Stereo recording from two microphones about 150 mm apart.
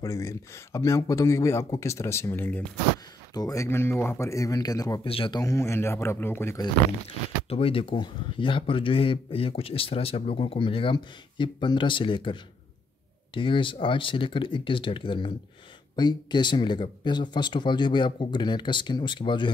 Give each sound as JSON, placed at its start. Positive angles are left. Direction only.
{"t": 0.0, "sound": "speech", "side_deg": 20}
{"t": 3.3, "sound": "speech", "side_deg": 25}
{"t": 5.0, "sound": "speech", "side_deg": 35}
{"t": 5.4, "sound": "speech", "side_deg": 20}
{"t": 6.6, "sound": "speech", "side_deg": 40}